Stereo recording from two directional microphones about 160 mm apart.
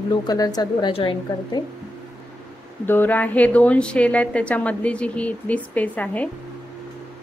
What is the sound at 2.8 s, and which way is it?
Speech, 10° left (ahead or behind).